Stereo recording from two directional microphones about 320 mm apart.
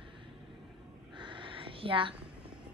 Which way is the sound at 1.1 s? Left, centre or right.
Centre.